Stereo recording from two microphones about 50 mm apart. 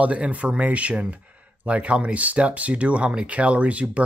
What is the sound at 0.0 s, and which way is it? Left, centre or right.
Speech, right.